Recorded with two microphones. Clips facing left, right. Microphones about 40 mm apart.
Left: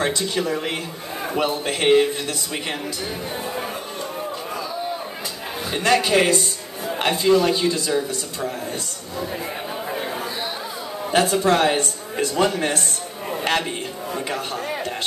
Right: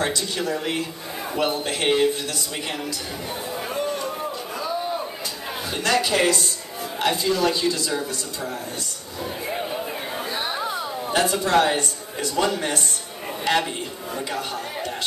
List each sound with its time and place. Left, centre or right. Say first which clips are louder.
0.1 s a man's voice: left 3 dB; left
5.7 s a man's voice: left 3 dB; left
11.3 s a man's voice: even; left